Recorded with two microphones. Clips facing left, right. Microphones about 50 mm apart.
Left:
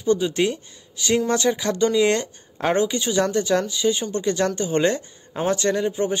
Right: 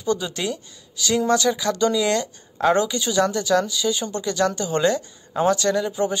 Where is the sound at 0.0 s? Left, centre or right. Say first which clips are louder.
Left 4 dB; left.